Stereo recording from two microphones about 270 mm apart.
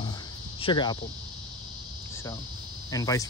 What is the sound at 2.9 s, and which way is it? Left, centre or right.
Speech, centre.